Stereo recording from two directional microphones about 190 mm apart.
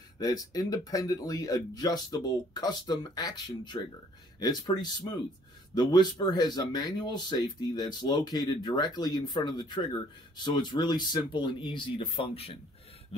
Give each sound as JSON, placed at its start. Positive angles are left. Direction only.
{"t": 0.2, "sound": "speech", "side_deg": 20}